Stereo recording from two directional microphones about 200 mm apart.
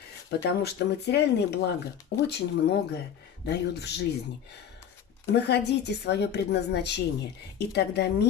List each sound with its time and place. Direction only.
0.3 s a woman's voice: 55° left (ahead or behind)
5.2 s a woman's voice: 55° left (ahead or behind)